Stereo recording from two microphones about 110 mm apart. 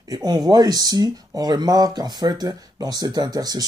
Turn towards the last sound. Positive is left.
turn(degrees=-35)  # may be behind; listen again after turning